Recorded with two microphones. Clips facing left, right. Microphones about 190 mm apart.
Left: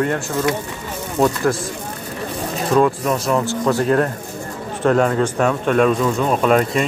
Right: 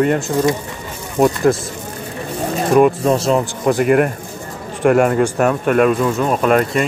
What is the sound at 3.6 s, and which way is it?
Speech, 15° right (ahead or behind).